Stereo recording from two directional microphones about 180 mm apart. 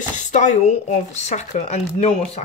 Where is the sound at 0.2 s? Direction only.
40° left (ahead or behind).